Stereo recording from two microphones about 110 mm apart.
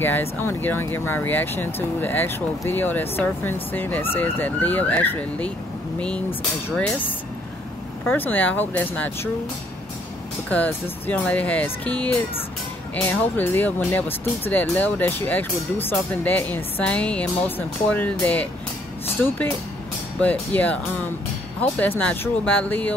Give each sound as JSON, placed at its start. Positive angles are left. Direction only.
{"t": 0.0, "sound": "speech", "side_deg": 20}
{"t": 8.1, "sound": "speech", "side_deg": 15}
{"t": 10.5, "sound": "speech", "side_deg": 15}
{"t": 12.9, "sound": "speech", "side_deg": 15}